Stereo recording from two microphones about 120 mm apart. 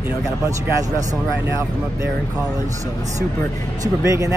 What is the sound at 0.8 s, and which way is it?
Speech, 30° right (ahead or behind).